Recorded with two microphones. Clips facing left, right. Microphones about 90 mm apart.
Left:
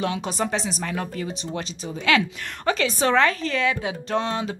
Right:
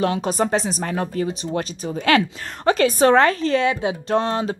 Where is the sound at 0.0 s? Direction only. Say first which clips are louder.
Right 5 dB; 40° right (ahead or behind).